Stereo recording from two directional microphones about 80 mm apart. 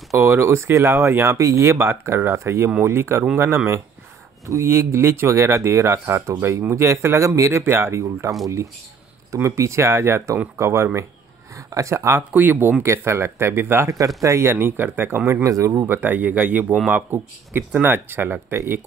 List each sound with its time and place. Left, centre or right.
0.1 s speech: right
12.2 s speech: right
13.8 s speech: right
14.5 s speech: right
15.4 s speech: right
15.9 s speech: right